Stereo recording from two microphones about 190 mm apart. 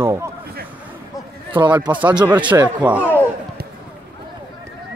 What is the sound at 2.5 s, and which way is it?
Speech, 10° right (ahead or behind).